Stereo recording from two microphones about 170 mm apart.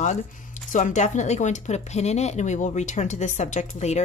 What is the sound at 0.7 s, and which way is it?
A woman's voice, 45° left (ahead or behind).